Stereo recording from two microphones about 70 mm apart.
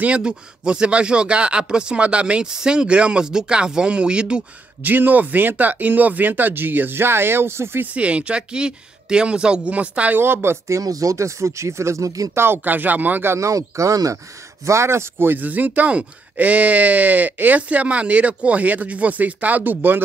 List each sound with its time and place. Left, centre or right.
0.0 s speech: centre
4.8 s speech: right
7.8 s speech: centre
10.1 s speech: right
10.8 s speech: right
12.4 s speech: right
13.4 s speech: right